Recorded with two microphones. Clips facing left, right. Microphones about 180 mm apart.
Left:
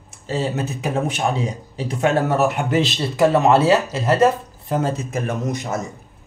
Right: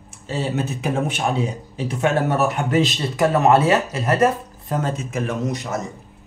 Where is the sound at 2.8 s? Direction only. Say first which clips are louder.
Left 2 dB; 30° left (ahead or behind).